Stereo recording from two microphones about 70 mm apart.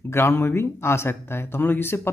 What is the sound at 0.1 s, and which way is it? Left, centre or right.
Speech, left.